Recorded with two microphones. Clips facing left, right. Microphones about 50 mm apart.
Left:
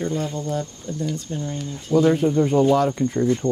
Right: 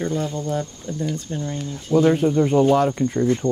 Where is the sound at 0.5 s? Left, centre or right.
Right.